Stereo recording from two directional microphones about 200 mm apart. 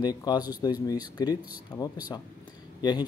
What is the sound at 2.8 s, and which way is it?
Speech, 20° left (ahead or behind).